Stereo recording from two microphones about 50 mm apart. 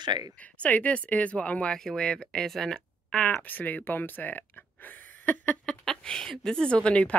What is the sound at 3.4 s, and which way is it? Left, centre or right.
Speech, left.